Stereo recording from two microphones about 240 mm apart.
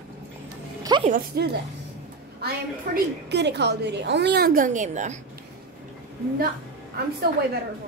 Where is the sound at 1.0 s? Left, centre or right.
Right.